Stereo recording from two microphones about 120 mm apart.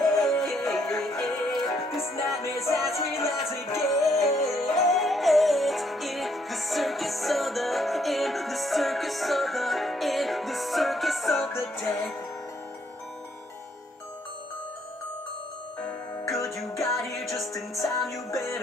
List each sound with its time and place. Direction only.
0.0 s music: 5° left (ahead or behind)
2.9 s music: 25° left (ahead or behind)
3.8 s music: centre (ahead or behind)
16.3 s music: centre (ahead or behind)
17.7 s music: 30° left (ahead or behind)